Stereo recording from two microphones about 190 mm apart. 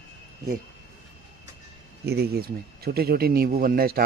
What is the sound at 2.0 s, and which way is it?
Speech, 55° right (ahead or behind).